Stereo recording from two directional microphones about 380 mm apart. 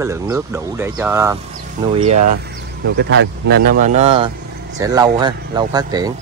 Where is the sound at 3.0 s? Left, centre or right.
Right; by 6.1 s centre.